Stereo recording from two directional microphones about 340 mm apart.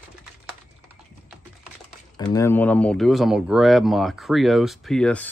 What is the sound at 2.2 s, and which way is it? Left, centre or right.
Speech, centre.